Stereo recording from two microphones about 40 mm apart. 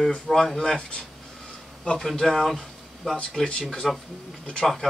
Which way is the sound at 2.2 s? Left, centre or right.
Centre.